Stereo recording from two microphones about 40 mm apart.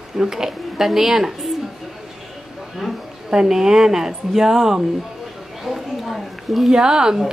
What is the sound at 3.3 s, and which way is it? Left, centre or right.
Speech, centre.